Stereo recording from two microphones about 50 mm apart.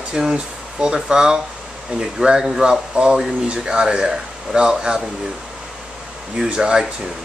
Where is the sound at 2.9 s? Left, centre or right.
Centre.